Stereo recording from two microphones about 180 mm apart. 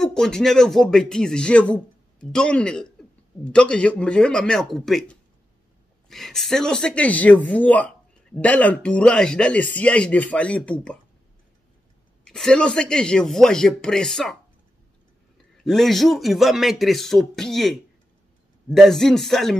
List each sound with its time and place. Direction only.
0.0 s speech: 5° left (ahead or behind)
12.3 s speech: 5° left (ahead or behind)
15.6 s speech: centre (ahead or behind)